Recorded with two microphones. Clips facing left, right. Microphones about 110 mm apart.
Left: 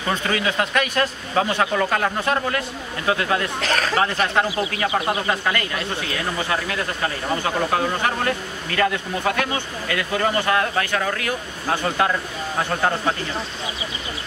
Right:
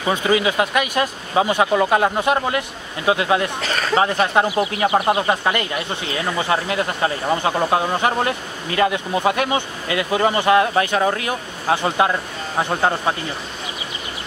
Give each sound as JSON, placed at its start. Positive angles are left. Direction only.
{"t": 0.0, "sound": "speech", "side_deg": -10}
{"t": 3.6, "sound": "a sound", "side_deg": 0}
{"t": 4.2, "sound": "speech", "side_deg": -15}